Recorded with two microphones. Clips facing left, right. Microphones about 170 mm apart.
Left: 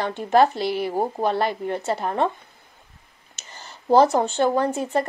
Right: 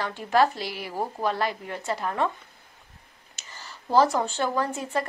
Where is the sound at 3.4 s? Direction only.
20° left (ahead or behind).